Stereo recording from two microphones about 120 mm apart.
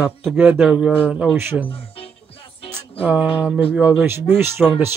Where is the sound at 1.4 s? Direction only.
20° right (ahead or behind).